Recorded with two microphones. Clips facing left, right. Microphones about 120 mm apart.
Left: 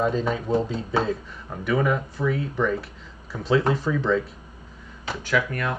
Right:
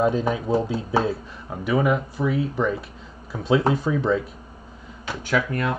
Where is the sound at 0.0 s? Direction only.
10° right (ahead or behind).